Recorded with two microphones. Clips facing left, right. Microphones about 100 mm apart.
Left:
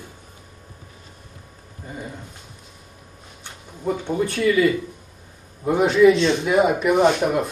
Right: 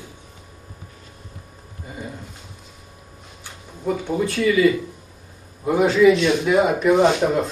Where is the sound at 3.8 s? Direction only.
25° left (ahead or behind).